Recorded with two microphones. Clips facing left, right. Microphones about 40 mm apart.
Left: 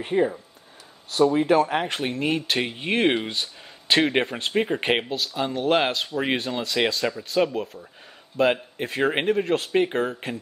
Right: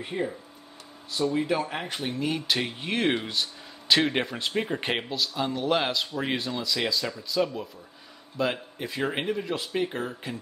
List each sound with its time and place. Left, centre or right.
0.0 s speech: left
2.0 s speech: left
5.5 s speech: left
7.5 s speech: left
8.4 s speech: left
9.4 s speech: left
9.7 s speech: left